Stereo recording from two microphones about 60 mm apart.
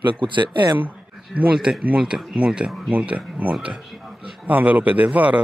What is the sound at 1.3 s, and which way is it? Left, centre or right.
A man's voice, centre.